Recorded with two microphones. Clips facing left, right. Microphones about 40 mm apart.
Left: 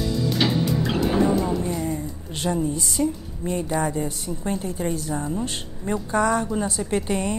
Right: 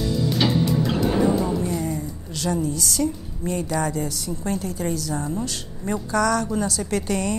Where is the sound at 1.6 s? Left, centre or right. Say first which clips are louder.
Right 1 dB; left.